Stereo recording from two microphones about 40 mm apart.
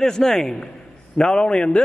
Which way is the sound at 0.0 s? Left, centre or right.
Centre.